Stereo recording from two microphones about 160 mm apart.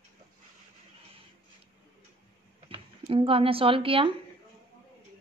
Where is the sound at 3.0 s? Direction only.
35° right (ahead or behind).